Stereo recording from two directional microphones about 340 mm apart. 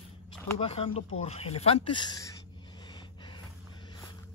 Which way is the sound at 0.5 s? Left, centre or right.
Centre.